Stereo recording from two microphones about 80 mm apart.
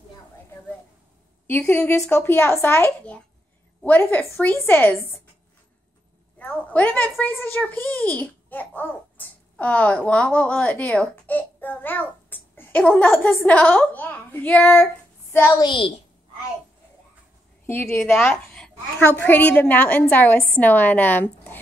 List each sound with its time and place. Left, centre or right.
1.5 s a woman's voice: left
6.3 s a woman's voice: left
15.6 s a child's voice: left
17.6 s a woman's voice: left
18.1 s a woman's voice: centre
18.9 s a woman's voice: left